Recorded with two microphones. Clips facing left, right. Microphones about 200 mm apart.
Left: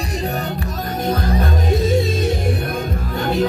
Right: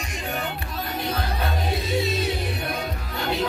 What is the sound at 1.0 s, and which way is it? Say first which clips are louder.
Music: left 9 dB; 45° left (ahead or behind).